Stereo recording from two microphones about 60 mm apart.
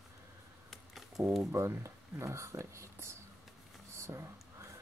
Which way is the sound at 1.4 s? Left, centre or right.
Right.